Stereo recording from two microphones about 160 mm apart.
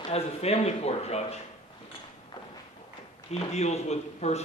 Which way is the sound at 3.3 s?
40° left (ahead or behind).